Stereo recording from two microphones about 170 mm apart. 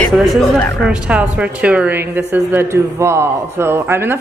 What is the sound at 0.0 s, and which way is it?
A woman's voice, centre (ahead or behind).